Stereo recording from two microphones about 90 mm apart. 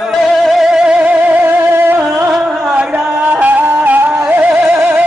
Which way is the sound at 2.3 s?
10° right (ahead or behind).